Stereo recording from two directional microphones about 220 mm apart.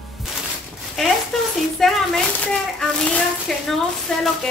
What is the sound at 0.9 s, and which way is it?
A woman's voice, centre (ahead or behind).